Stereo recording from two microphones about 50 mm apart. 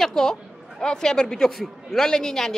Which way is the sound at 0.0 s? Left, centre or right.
Centre.